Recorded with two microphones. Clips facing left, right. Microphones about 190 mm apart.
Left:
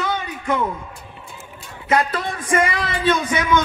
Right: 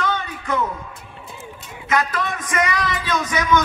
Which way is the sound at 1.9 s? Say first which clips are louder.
Left 2 dB; 30° left (ahead or behind).